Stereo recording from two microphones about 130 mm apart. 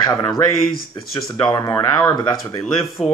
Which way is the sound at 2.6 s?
Centre (ahead or behind).